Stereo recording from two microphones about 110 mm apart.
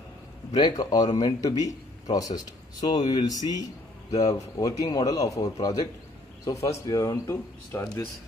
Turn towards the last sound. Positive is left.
turn(degrees=25)  # may be behind; listen again after turning